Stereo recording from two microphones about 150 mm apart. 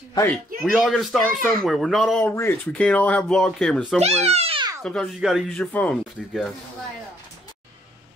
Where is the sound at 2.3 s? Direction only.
15° left (ahead or behind).